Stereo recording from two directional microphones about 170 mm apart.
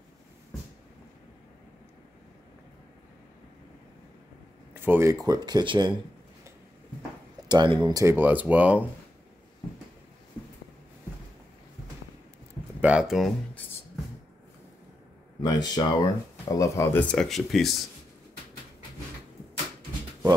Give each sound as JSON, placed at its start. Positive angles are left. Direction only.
{"t": 4.7, "sound": "speech", "side_deg": -15}
{"t": 7.4, "sound": "speech", "side_deg": -25}
{"t": 12.8, "sound": "speech", "side_deg": -5}
{"t": 15.4, "sound": "speech", "side_deg": 20}
{"t": 17.1, "sound": "speech", "side_deg": 0}